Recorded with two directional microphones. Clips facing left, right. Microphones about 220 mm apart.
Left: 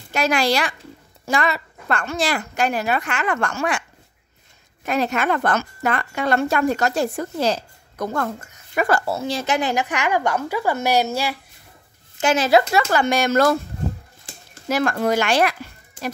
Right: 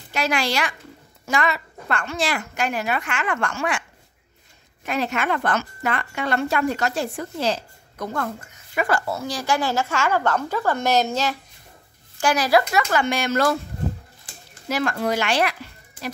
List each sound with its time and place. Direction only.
0.1 s speech: 45° left (ahead or behind)
4.8 s speech: 40° left (ahead or behind)
9.1 s a woman's voice: 25° left (ahead or behind)
12.2 s a woman's voice: 25° left (ahead or behind)
12.9 s speech: 40° left (ahead or behind)
14.7 s speech: 50° left (ahead or behind)